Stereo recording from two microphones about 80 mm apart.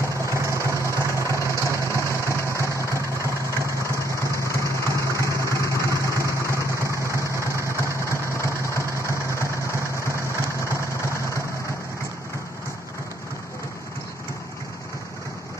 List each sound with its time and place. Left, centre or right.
0.2 s vehicle: right
0.5 s vehicle: left
6.6 s vehicle: right
7.0 s vehicle: left